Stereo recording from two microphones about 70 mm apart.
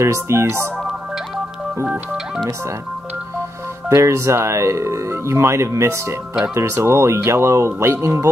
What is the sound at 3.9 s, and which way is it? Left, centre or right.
Speech, right.